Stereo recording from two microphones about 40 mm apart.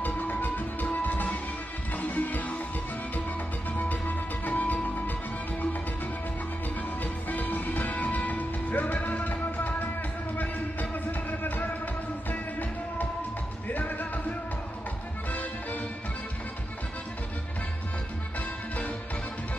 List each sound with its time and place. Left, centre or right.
0.0 s music: left
4.5 s music: left
7.0 s music: left